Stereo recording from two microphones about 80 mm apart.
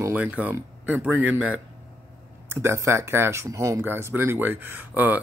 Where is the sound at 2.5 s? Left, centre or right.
Right.